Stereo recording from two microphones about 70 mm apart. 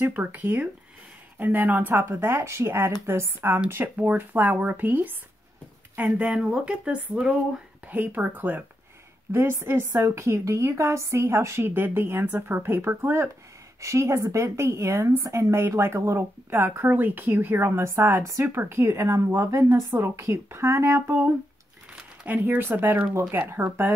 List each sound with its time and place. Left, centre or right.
0.0 s a woman's voice: right
6.0 s speech: centre
9.3 s a woman's voice: right
13.7 s a woman's voice: right
22.2 s a woman's voice: right